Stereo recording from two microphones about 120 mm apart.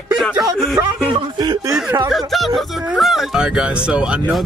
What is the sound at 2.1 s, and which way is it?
Speech, centre (ahead or behind).